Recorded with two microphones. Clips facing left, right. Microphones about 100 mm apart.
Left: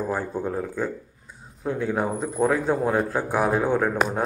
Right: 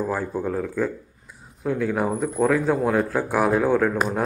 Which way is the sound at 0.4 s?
20° left (ahead or behind).